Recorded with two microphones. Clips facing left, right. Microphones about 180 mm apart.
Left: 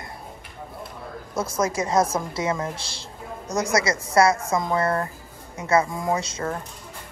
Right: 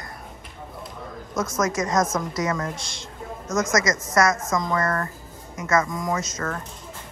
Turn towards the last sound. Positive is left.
turn(degrees=30)  # may be behind; listen again after turning